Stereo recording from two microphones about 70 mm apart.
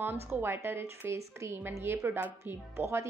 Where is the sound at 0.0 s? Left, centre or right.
Right.